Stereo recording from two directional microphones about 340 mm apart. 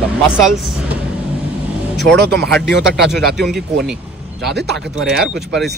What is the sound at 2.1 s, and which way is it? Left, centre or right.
Speech, right.